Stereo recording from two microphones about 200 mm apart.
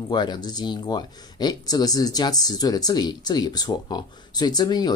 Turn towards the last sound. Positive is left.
turn(degrees=20)  # may be behind; listen again after turning